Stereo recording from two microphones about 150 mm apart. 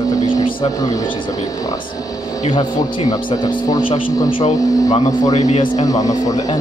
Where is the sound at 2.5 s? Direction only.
30° left (ahead or behind).